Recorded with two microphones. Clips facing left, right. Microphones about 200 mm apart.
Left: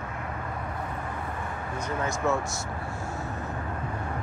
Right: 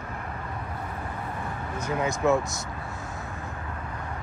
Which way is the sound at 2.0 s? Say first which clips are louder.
Right 4 dB; 15° right (ahead or behind).